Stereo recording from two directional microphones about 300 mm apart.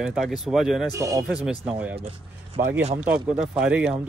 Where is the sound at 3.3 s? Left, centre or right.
Centre.